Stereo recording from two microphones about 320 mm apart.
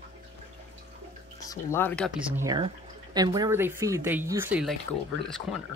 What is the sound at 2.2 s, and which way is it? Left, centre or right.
Speech, centre.